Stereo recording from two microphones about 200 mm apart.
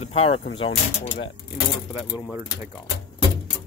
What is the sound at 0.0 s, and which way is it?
Speech, 30° left (ahead or behind).